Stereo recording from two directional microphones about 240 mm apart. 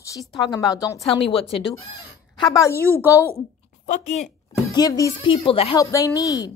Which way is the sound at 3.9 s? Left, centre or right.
Left.